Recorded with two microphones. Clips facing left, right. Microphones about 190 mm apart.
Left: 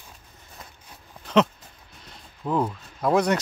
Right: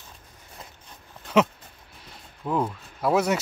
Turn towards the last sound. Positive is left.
turn(degrees=-5)  # may be behind; listen again after turning